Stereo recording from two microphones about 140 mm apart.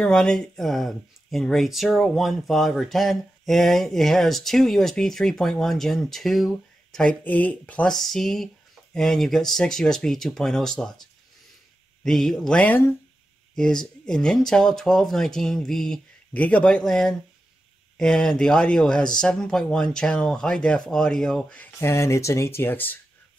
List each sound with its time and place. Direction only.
0.0 s speech: 5° left (ahead or behind)
21.7 s speech: 20° left (ahead or behind)